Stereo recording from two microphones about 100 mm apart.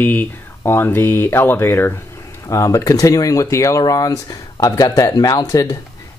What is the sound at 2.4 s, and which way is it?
Speech, 35° left (ahead or behind).